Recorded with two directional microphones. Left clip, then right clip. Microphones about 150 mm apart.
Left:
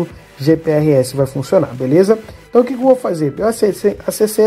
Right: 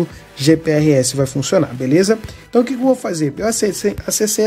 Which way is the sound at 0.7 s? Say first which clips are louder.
Left 1 dB; 25° right (ahead or behind).